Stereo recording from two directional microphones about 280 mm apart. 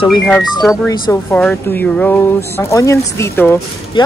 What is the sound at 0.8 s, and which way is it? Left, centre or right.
Speech, centre.